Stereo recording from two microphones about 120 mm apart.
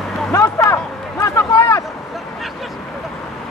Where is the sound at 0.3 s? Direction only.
25° left (ahead or behind).